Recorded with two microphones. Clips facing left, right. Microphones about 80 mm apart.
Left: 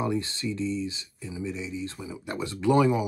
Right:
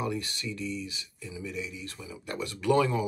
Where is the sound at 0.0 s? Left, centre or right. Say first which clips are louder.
Left 4 dB; left.